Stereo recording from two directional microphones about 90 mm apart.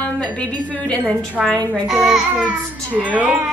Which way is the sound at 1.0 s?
20° right (ahead or behind).